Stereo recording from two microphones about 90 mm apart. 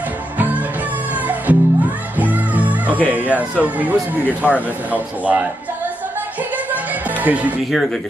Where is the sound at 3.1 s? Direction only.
15° right (ahead or behind).